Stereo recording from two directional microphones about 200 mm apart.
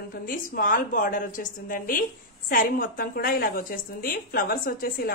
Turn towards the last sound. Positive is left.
turn(degrees=45)  # may be behind; listen again after turning